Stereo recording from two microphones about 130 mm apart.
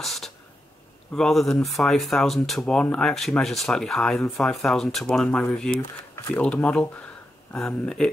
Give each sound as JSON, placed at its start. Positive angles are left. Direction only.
{"t": 0.0, "sound": "a sound", "side_deg": 0}
{"t": 1.1, "sound": "speech", "side_deg": 5}
{"t": 5.8, "sound": "speech", "side_deg": 20}
{"t": 6.3, "sound": "speech", "side_deg": 10}